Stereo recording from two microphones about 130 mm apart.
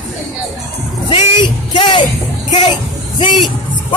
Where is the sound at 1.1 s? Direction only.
40° left (ahead or behind).